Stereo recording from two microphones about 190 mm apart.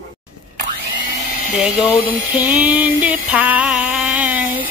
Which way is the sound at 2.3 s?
10° right (ahead or behind).